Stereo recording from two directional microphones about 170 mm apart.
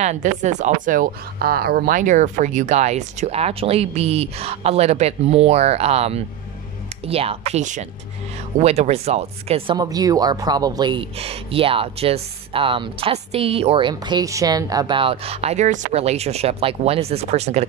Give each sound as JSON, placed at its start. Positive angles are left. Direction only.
{"t": 0.0, "sound": "speech", "side_deg": -45}
{"t": 9.8, "sound": "speech", "side_deg": -20}